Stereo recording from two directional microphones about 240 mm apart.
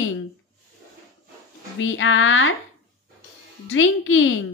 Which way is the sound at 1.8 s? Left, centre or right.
Left.